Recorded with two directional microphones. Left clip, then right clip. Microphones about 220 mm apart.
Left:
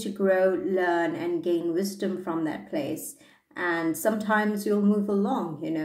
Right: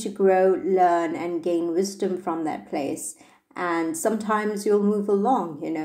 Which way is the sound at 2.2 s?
30° right (ahead or behind).